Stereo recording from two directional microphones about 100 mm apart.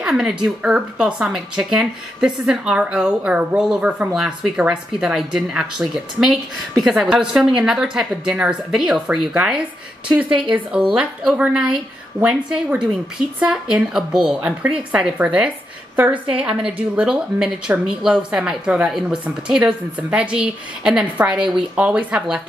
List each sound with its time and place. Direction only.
0.0 s speech: 5° right (ahead or behind)
9.3 s speech: 10° right (ahead or behind)
10.3 s speech: 55° right (ahead or behind)
10.9 s speech: 10° right (ahead or behind)